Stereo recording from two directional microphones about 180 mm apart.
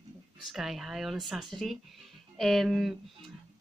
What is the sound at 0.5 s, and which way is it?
A woman's voice, centre (ahead or behind).